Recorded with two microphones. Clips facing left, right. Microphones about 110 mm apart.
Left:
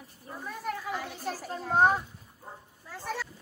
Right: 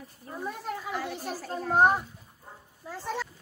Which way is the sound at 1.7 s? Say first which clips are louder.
Right 1 dB; 10° right (ahead or behind).